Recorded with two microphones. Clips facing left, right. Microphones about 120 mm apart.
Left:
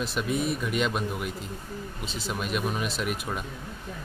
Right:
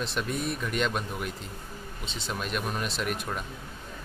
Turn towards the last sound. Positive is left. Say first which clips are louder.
# left 1 dB
turn(degrees=5)  # may be behind; listen again after turning